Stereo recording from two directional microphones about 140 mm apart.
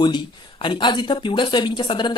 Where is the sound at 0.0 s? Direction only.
35° left (ahead or behind).